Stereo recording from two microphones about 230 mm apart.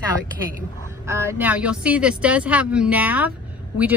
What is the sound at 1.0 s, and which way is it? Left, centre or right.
Speech, centre.